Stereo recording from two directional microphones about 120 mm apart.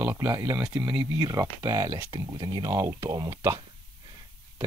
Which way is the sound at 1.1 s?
30° right (ahead or behind).